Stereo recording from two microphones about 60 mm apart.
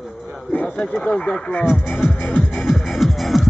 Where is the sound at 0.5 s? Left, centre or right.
Centre.